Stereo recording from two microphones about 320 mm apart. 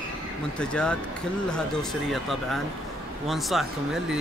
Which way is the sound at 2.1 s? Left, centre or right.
Centre.